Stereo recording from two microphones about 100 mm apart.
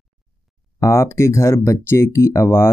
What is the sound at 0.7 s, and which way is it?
Speech, 30° left (ahead or behind).